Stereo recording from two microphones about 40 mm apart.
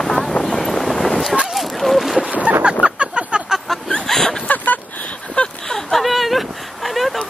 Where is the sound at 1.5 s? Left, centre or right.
Centre.